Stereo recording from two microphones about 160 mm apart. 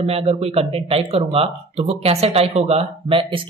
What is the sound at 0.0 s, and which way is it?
Speech, 40° right (ahead or behind).